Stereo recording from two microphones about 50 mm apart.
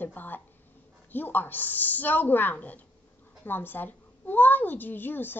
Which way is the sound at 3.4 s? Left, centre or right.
Left.